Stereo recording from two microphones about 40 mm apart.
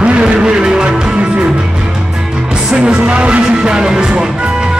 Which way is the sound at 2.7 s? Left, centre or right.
Right.